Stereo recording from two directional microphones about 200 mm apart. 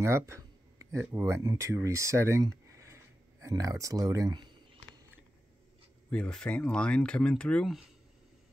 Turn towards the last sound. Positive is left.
turn(degrees=5)  # may be behind; listen again after turning